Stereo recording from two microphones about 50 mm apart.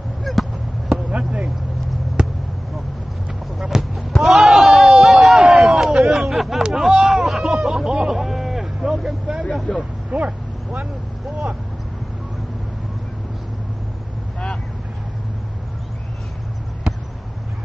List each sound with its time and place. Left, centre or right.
0.2 s basketball bounce: centre
2.2 s basketball bounce: centre
3.7 s basketball bounce: centre
4.2 s a sound: centre
9.8 s vehicle: right